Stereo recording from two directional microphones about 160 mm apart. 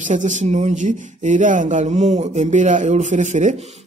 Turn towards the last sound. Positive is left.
turn(degrees=-50)  # may be behind; listen again after turning